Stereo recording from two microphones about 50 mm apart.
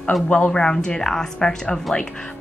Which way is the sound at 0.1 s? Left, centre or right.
Centre.